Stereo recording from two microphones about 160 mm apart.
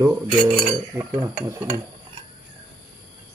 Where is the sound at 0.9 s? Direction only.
25° right (ahead or behind).